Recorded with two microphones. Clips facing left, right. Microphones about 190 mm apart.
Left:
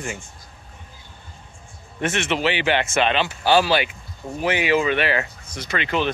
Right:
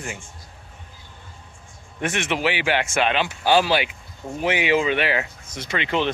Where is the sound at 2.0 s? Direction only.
15° right (ahead or behind).